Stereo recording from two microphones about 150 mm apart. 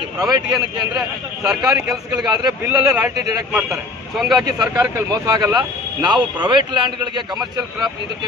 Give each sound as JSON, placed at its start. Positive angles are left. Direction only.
{"t": 0.2, "sound": "speech", "side_deg": -25}
{"t": 3.5, "sound": "a man's voice", "side_deg": 0}
{"t": 4.4, "sound": "speech", "side_deg": -25}